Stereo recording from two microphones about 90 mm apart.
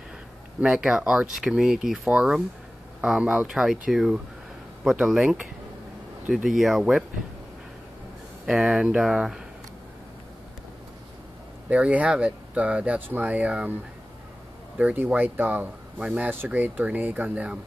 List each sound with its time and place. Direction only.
0.6 s speech: 5° right (ahead or behind)
6.3 s speech: centre (ahead or behind)
8.5 s speech: 5° right (ahead or behind)
11.7 s speech: 15° right (ahead or behind)
14.8 s speech: 15° right (ahead or behind)